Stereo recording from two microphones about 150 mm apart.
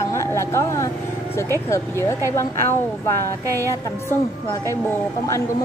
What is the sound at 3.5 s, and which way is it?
A woman's voice, 15° left (ahead or behind).